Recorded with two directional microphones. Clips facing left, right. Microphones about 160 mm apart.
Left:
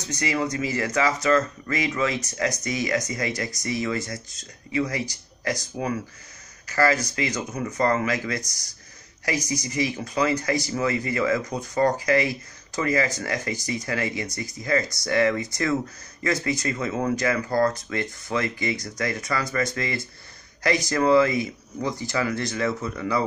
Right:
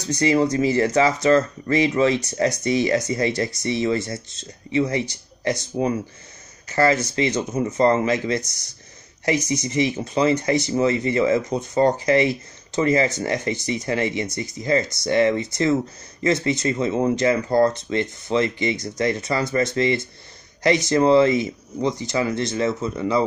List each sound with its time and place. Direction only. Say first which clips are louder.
0.0 s speech: right 7 dB; 30° right (ahead or behind)